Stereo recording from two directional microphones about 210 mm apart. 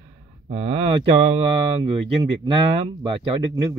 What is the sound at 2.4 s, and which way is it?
Speech, 25° right (ahead or behind).